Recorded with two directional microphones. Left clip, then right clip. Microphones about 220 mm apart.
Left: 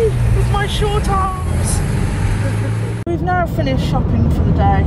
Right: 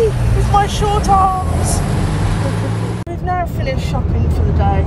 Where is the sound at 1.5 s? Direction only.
50° right (ahead or behind).